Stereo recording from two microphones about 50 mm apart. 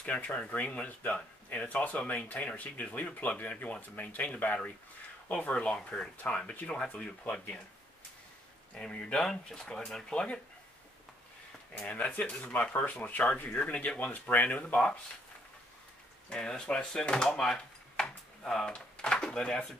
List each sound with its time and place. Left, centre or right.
0.0 s speech: left
8.7 s speech: centre
11.7 s speech: left
16.3 s speech: centre